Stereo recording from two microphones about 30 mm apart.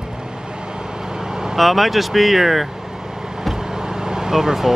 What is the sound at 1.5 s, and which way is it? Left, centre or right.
Speech, centre.